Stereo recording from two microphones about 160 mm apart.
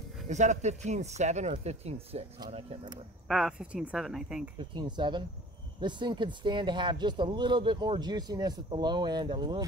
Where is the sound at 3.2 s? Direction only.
Centre (ahead or behind).